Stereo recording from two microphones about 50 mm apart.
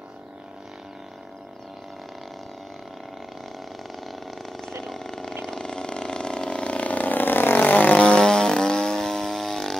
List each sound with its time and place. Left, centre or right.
4.0 s vehicle: centre; by 7.9 s left
7.9 s a sound: left
8.2 s chainsaw: centre